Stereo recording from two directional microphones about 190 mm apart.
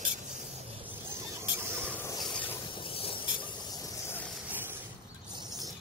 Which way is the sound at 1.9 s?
10° left (ahead or behind).